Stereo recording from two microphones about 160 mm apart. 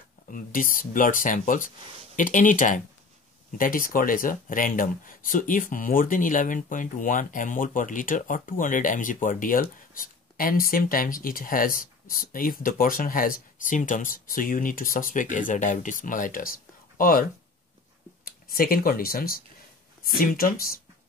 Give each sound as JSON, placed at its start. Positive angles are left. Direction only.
{"t": 0.3, "sound": "speech", "side_deg": 60}